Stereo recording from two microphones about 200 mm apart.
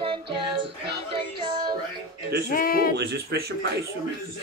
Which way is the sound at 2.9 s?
55° right (ahead or behind).